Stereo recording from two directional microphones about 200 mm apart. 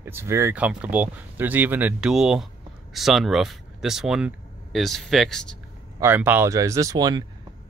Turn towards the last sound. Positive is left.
turn(degrees=-20)  # may be behind; listen again after turning